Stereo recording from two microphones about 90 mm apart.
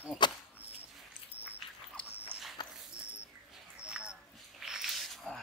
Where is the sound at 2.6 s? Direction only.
60° left (ahead or behind).